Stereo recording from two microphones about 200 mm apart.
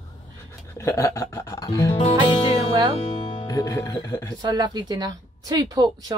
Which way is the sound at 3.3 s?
20° left (ahead or behind).